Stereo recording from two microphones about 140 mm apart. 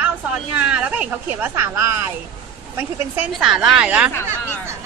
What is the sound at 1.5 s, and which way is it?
A woman's voice, 20° right (ahead or behind).